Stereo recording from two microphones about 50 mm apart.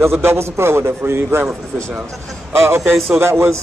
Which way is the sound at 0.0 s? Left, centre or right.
Right.